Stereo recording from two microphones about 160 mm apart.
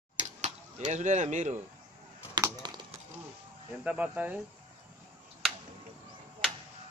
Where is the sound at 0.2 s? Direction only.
45° right (ahead or behind).